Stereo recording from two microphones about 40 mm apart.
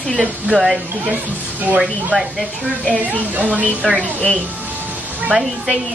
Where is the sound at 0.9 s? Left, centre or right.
Right.